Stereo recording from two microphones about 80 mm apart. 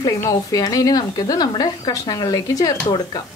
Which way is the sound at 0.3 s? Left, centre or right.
Left.